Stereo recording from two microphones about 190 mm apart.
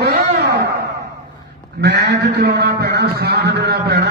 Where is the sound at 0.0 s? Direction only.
60° right (ahead or behind).